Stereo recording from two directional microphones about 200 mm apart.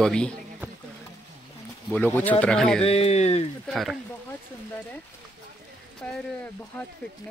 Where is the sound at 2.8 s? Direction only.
30° left (ahead or behind).